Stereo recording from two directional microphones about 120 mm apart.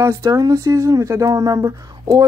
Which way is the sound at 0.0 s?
25° right (ahead or behind).